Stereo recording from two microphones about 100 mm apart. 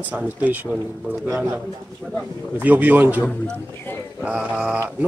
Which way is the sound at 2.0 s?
10° left (ahead or behind).